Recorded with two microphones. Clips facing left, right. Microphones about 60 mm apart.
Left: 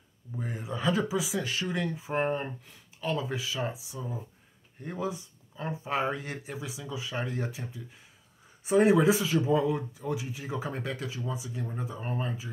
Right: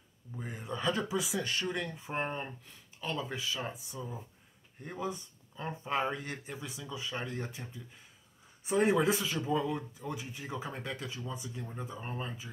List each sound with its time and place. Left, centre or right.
0.4 s speech: centre
11.4 s speech: centre